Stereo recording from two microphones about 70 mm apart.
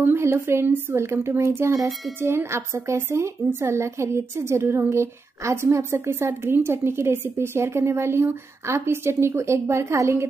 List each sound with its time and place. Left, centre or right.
0.0 s a woman's voice: right